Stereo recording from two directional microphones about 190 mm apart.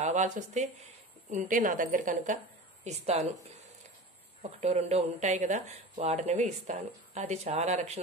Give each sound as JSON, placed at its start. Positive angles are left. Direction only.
{"t": 0.0, "sound": "a woman's voice", "side_deg": -40}
{"t": 4.4, "sound": "speech", "side_deg": -35}